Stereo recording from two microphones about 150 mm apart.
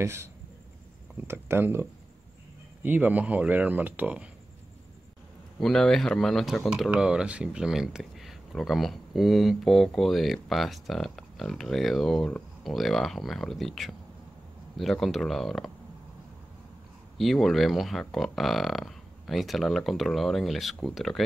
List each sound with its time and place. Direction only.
0.0 s speech: 15° right (ahead or behind)
5.6 s speech: centre (ahead or behind)
17.2 s speech: centre (ahead or behind)